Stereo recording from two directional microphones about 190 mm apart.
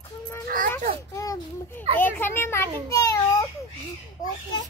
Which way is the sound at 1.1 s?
20° left (ahead or behind).